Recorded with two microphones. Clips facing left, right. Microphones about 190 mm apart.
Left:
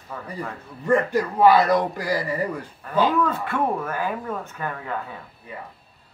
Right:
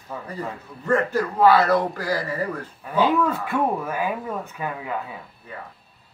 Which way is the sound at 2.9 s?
10° right (ahead or behind).